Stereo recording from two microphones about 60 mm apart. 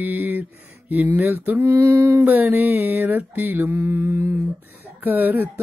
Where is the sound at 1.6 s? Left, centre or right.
Right.